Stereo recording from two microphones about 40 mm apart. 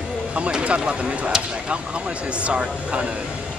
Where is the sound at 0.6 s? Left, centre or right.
Right.